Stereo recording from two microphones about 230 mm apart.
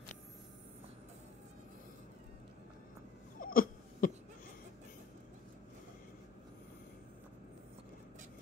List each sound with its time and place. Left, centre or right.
3.3 s hiccup: left